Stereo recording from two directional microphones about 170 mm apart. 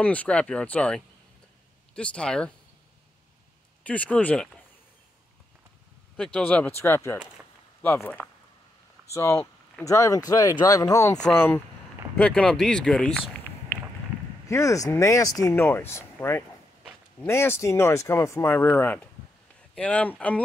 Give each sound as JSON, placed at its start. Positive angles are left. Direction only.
{"t": 0.0, "sound": "speech", "side_deg": 10}
{"t": 3.8, "sound": "speech", "side_deg": 10}
{"t": 6.1, "sound": "speech", "side_deg": 5}
{"t": 14.5, "sound": "speech", "side_deg": 20}